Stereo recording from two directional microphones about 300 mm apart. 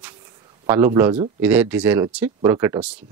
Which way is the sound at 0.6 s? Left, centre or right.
Centre.